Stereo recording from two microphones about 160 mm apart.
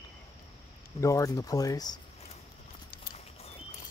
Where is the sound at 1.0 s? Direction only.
20° left (ahead or behind).